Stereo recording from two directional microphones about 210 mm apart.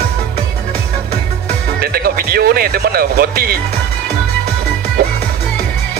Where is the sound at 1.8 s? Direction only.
45° right (ahead or behind).